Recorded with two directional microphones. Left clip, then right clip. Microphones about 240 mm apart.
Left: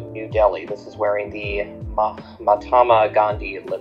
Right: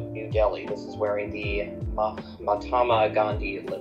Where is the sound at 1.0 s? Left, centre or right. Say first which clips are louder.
Left 6 dB; left.